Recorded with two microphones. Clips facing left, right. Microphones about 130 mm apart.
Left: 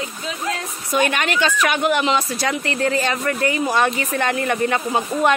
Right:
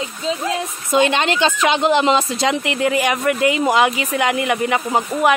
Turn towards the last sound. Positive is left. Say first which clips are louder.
# right 2 dB
turn(degrees=-10)  # may be behind; listen again after turning